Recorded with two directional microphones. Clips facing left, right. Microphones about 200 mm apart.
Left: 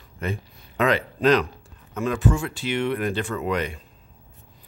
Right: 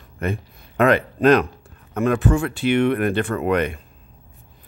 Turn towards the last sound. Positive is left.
turn(degrees=-60)  # may be behind; listen again after turning